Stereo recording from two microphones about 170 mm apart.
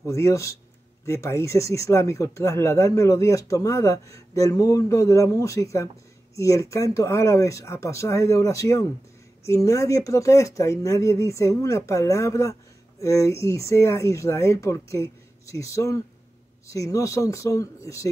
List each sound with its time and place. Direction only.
0.0 s speech: 15° left (ahead or behind)